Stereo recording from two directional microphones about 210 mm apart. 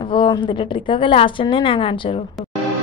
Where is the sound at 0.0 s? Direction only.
25° left (ahead or behind).